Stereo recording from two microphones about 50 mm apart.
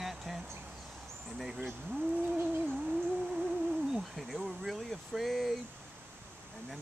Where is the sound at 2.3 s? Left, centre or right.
Right.